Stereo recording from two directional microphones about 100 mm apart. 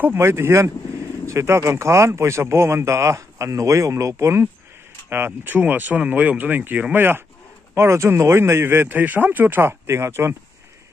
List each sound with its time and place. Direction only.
0.0 s a man's voice: 20° right (ahead or behind)